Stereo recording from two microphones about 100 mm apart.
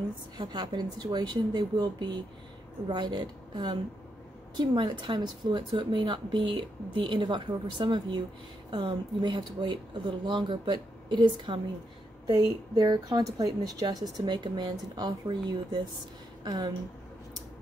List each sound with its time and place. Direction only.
0.4 s speech: 50° right (ahead or behind)